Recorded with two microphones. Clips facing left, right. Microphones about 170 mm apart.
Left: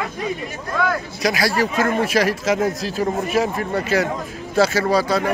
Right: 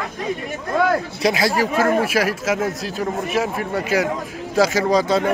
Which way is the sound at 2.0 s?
5° right (ahead or behind).